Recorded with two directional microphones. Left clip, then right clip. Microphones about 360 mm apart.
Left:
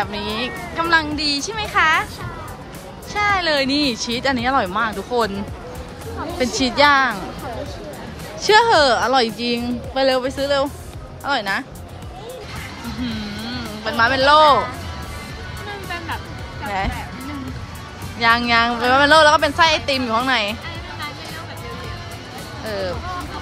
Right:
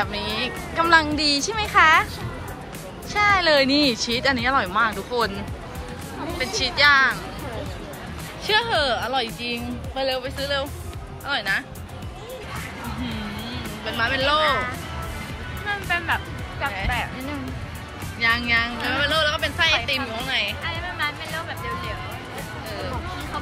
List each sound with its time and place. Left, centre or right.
0.0 s speech: centre
3.1 s speech: centre
6.4 s speech: centre
8.4 s speech: left
13.0 s music: centre
18.2 s speech: centre